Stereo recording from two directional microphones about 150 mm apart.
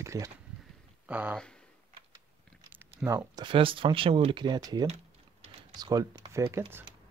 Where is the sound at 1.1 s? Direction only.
10° right (ahead or behind).